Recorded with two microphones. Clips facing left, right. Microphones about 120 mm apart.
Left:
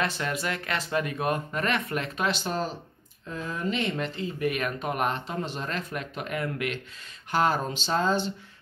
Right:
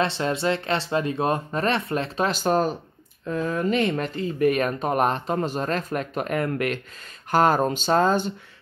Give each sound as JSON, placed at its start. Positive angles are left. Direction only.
{"t": 0.0, "sound": "speech", "side_deg": -30}